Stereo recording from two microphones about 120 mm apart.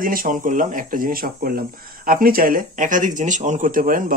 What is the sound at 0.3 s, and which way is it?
Speech, 90° right.